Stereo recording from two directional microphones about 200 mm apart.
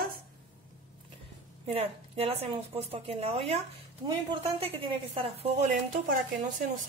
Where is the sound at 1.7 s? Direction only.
30° right (ahead or behind).